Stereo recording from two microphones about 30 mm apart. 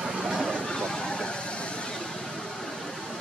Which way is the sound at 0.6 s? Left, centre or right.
Left.